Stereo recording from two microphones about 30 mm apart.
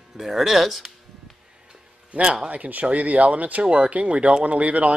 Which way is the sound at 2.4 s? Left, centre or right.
Right.